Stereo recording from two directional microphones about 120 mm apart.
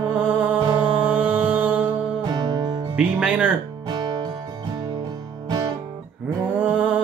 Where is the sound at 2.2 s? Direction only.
35° right (ahead or behind).